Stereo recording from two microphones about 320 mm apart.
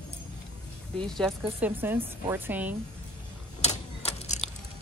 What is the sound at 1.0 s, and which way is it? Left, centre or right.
Speech, centre.